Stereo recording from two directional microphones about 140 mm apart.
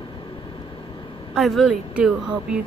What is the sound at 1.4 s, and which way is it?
Speech, centre (ahead or behind).